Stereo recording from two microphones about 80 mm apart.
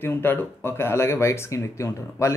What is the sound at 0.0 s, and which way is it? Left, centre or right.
Speech, left.